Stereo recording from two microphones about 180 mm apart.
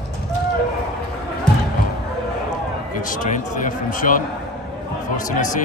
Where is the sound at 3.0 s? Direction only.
45° left (ahead or behind).